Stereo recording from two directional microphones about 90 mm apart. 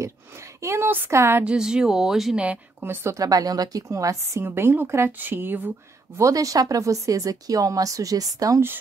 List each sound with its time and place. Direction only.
0.6 s a woman's voice: 30° right (ahead or behind)
1.4 s speech: 10° right (ahead or behind)
2.4 s a woman's voice: 20° right (ahead or behind)
3.2 s a woman's voice: 40° right (ahead or behind); by 5.7 s 25° right (ahead or behind)
6.1 s speech: 40° right (ahead or behind)